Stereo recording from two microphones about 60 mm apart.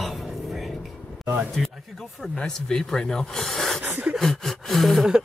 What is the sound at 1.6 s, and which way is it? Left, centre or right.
Speech, centre.